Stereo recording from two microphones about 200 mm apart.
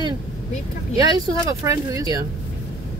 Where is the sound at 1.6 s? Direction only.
15° right (ahead or behind).